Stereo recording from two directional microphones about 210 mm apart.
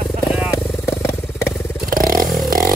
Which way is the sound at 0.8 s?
15° left (ahead or behind).